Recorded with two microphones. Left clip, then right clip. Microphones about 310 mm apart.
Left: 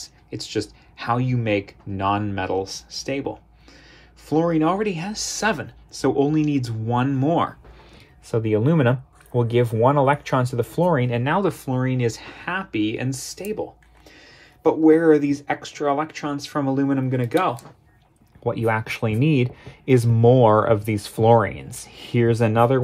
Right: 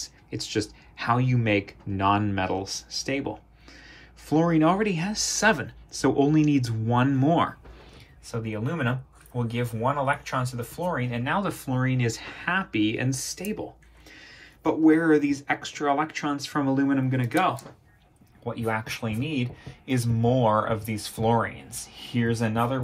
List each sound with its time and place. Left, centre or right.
0.0 s speech: centre
8.3 s speech: left
18.5 s speech: left